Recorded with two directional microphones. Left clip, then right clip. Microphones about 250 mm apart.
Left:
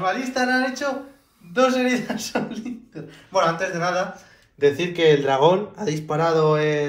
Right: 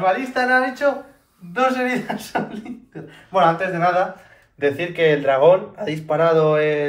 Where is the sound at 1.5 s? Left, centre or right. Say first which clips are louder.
Even; centre.